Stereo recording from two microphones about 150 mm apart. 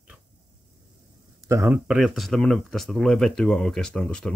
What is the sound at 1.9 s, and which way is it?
Speech, centre (ahead or behind).